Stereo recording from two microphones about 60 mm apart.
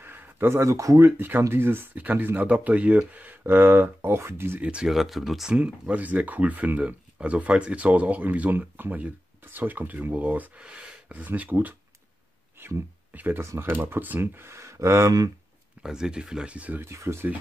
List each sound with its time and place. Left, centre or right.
0.0 s a sound: right
0.6 s speech: right
1.0 s speech: right
4.6 s speech: centre
4.8 s speech: centre
5.6 s speech: right
10.6 s speech: centre
12.5 s a sound: right
13.1 s speech: right
13.4 s speech: right
13.7 s speech: right
14.5 s speech: right
15.8 s speech: centre
16.8 s speech: right